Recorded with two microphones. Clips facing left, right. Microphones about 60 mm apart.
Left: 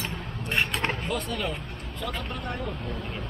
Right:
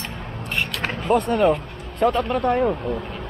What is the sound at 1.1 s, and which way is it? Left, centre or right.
Speech, right.